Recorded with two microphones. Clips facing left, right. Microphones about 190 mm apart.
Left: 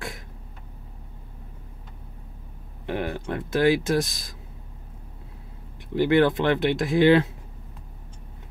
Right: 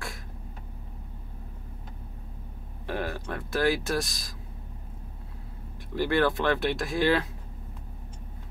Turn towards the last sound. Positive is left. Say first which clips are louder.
# left 7 dB
turn(degrees=20)  # may be behind; listen again after turning